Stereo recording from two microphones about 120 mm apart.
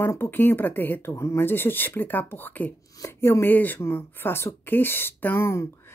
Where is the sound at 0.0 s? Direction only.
20° left (ahead or behind).